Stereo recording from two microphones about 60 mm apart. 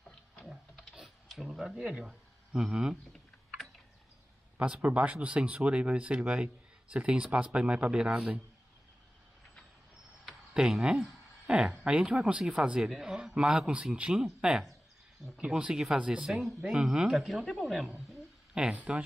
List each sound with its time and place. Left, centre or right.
0.5 s typing: centre
1.8 s speech: centre
4.6 s speech: centre
10.5 s speech: centre
18.8 s speech: right